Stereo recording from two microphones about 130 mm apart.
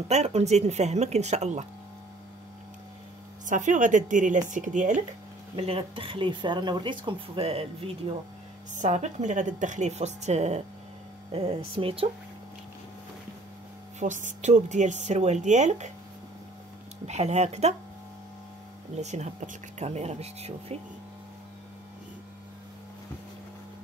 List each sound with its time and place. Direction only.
0.1 s speech: 55° right (ahead or behind)
3.4 s speech: 75° right (ahead or behind)
5.6 s speech: 45° right (ahead or behind)
8.7 s speech: 65° right (ahead or behind); by 12.1 s 45° right (ahead or behind)
13.9 s speech: 70° right (ahead or behind)
17.0 s speech: 55° right (ahead or behind)
18.9 s speech: 60° right (ahead or behind)